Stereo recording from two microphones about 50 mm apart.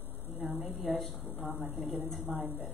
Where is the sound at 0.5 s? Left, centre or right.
Right.